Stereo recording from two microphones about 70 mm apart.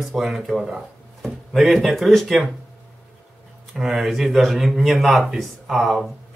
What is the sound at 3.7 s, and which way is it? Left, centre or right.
Speech, centre.